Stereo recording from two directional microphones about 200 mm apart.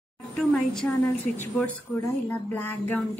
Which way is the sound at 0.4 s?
5° left (ahead or behind).